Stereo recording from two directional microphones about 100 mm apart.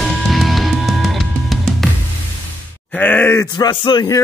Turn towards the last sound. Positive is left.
turn(degrees=45)  # may be behind; listen again after turning